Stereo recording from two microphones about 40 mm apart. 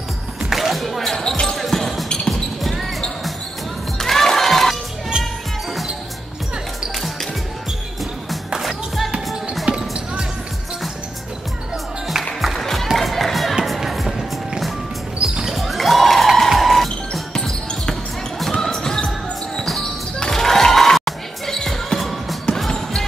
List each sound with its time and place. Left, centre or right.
0.5 s music: centre
1.1 s basketball bounce: centre
1.6 s basketball bounce: centre
4.0 s crowd: centre
8.5 s music: centre
9.7 s basketball bounce: right
12.4 s music: centre
15.5 s basketball bounce: centre
20.2 s music: centre
21.9 s music: centre
22.7 s basketball bounce: centre